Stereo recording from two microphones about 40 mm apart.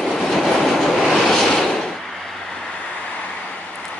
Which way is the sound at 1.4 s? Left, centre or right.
Centre.